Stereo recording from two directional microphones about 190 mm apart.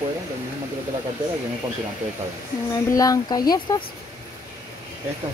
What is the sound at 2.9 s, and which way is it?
Speech, 20° left (ahead or behind).